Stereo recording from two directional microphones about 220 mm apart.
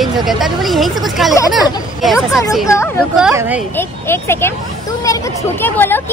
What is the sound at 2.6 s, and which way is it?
Speech, 15° left (ahead or behind).